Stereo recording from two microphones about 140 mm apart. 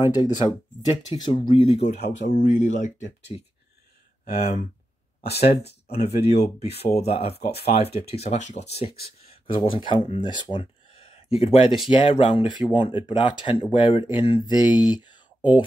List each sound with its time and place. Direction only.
0.0 s speech: 30° left (ahead or behind)